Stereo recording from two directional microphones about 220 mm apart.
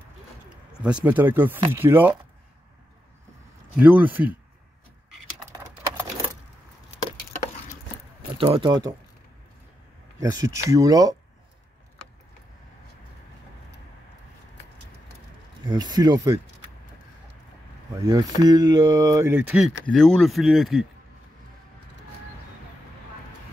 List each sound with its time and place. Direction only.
1.0 s speech: 10° right (ahead or behind)
3.7 s speech: 5° right (ahead or behind)
8.4 s speech: 25° right (ahead or behind)
10.2 s speech: 15° right (ahead or behind)
15.6 s speech: 20° right (ahead or behind)
18.0 s speech: 15° right (ahead or behind); by 20.8 s centre (ahead or behind)